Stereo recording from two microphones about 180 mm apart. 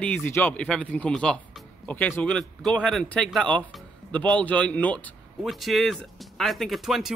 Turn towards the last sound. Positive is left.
turn(degrees=0)  # may be behind; listen again after turning